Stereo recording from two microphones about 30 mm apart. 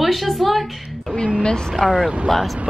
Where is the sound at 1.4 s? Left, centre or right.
Left.